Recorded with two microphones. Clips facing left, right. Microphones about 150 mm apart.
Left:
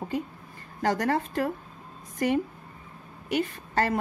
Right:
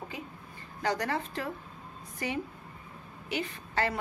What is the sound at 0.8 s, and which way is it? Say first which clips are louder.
Speech: left 5 dB; 50° left (ahead or behind).